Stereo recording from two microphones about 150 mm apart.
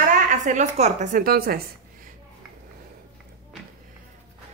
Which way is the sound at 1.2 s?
85° right.